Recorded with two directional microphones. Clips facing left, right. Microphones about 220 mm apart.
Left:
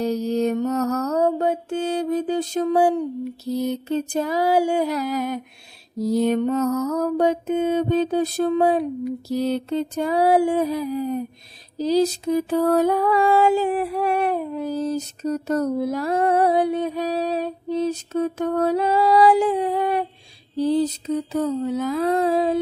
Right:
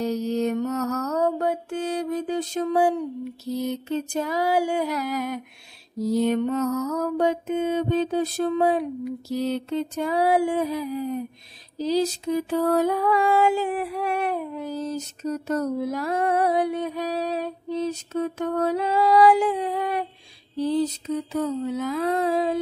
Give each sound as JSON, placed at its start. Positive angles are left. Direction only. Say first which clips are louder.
{"t": 0.0, "sound": "mantra", "louder": "left 3 dB", "side_deg": 35}
{"t": 3.5, "sound": "music", "louder": "left 3 dB", "side_deg": 35}